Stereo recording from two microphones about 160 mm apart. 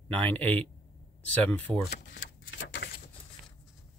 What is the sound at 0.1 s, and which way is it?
Speech, 10° left (ahead or behind).